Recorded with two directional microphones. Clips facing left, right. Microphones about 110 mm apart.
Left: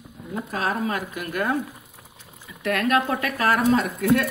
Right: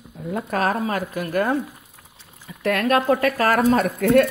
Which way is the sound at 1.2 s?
35° right (ahead or behind).